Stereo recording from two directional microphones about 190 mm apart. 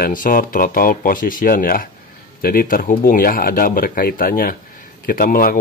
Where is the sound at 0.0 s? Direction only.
45° left (ahead or behind).